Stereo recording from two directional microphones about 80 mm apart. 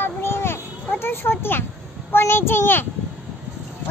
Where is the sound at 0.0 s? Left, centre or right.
Left.